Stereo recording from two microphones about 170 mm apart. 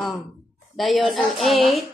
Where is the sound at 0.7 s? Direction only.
Centre (ahead or behind).